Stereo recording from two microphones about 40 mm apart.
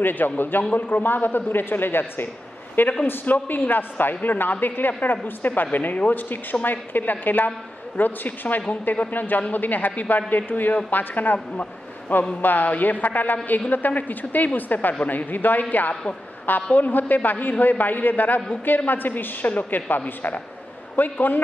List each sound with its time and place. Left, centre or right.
0.0 s a man's voice: left
12.4 s a woman's voice: left
16.7 s a woman's voice: left
20.9 s a woman's voice: left